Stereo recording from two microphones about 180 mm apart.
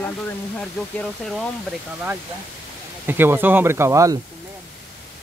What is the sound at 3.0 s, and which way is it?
Speech, 10° right (ahead or behind).